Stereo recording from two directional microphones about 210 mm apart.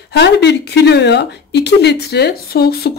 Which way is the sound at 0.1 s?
55° left (ahead or behind).